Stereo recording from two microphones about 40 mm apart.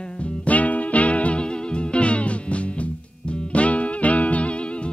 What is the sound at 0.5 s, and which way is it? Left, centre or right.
Music, left.